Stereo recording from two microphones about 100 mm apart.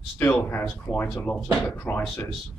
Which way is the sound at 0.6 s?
20° left (ahead or behind).